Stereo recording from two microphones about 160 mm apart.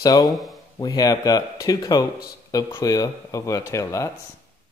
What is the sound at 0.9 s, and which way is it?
Speech, 25° left (ahead or behind).